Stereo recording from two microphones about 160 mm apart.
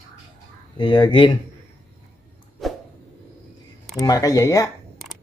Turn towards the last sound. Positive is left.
turn(degrees=20)  # may be behind; listen again after turning